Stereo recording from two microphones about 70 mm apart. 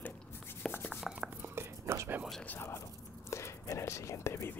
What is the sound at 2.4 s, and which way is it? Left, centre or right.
Speech, left.